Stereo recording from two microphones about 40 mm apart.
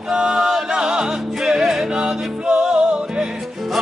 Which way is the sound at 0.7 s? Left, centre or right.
Right.